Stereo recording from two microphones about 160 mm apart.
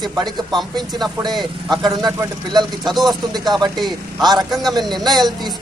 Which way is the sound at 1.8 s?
25° right (ahead or behind).